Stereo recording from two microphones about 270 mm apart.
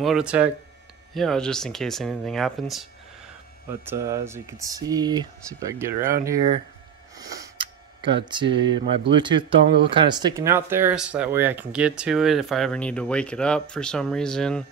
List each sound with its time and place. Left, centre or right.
0.0 s speech: centre
3.8 s speech: centre
7.2 s a sound: centre
9.1 s speech: centre